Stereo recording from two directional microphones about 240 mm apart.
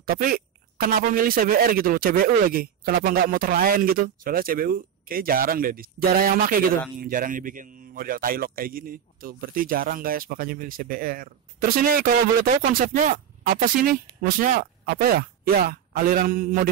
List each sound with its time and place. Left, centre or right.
0.0 s speech: right